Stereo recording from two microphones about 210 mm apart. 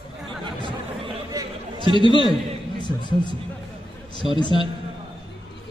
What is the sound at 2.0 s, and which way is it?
A man's voice, 20° left (ahead or behind).